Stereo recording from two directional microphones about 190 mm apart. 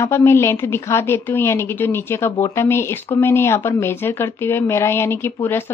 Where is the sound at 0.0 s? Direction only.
15° left (ahead or behind).